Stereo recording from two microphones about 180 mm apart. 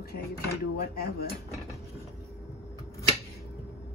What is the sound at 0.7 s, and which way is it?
Speech, 55° left (ahead or behind).